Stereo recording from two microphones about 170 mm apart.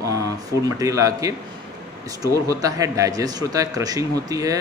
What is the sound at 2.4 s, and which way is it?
A man's voice, 20° right (ahead or behind).